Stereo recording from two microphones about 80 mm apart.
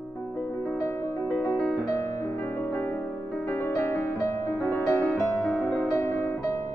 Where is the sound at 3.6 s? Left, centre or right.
Left.